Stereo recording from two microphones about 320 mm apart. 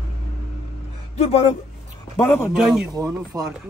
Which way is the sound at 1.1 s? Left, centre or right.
Centre.